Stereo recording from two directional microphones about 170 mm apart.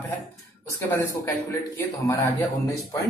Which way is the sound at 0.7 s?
15° left (ahead or behind).